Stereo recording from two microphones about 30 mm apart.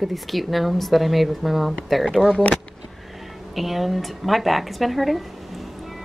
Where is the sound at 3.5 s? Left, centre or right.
Centre.